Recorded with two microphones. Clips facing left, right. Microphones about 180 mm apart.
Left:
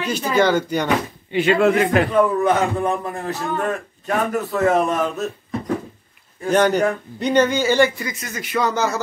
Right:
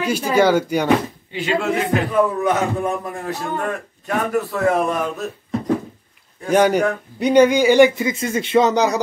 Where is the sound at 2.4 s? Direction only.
5° right (ahead or behind).